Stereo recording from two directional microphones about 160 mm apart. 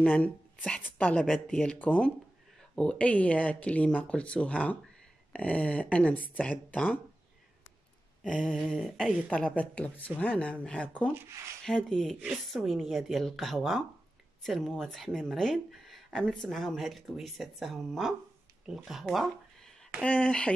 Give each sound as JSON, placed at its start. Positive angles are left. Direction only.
{"t": 0.0, "sound": "speech", "side_deg": 10}
{"t": 8.2, "sound": "speech", "side_deg": 0}
{"t": 11.1, "sound": "speech", "side_deg": -15}
{"t": 11.6, "sound": "speech", "side_deg": 5}